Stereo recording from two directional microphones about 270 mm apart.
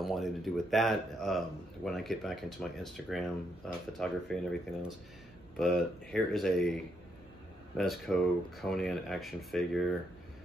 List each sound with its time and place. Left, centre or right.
0.0 s speech: centre
7.7 s speech: centre